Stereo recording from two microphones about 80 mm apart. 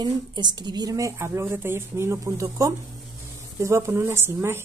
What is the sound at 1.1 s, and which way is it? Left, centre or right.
Speech, right.